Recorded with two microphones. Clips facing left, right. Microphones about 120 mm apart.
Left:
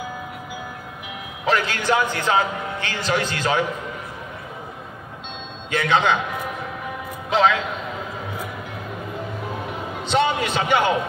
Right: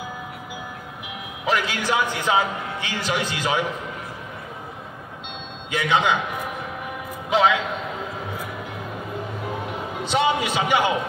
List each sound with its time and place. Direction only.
1.4 s a man's voice: 10° right (ahead or behind)
5.7 s a man's voice: 10° right (ahead or behind)
7.2 s a man's voice: 10° right (ahead or behind)
10.0 s a man's voice: 10° right (ahead or behind)